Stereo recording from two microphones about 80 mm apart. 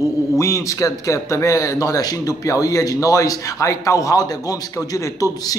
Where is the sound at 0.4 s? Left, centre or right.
Left.